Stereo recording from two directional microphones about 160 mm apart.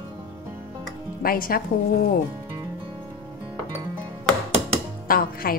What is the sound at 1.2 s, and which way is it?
Speech, 65° left (ahead or behind).